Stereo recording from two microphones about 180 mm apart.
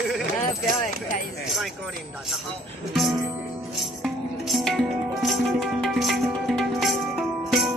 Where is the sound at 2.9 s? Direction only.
Centre (ahead or behind).